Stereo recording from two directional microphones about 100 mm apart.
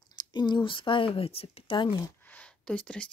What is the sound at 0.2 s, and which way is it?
Speech, 50° left (ahead or behind).